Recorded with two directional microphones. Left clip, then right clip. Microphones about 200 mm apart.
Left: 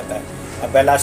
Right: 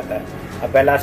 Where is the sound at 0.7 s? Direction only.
5° left (ahead or behind).